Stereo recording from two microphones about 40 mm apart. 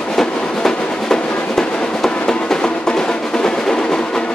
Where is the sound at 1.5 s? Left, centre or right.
Centre.